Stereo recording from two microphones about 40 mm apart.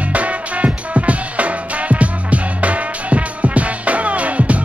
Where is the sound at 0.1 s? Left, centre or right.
Right.